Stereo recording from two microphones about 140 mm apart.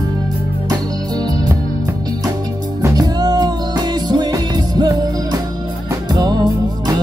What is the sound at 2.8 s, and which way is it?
Music, 25° right (ahead or behind).